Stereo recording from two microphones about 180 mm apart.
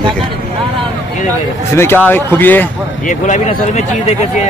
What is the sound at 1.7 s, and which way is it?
Speech, 10° left (ahead or behind).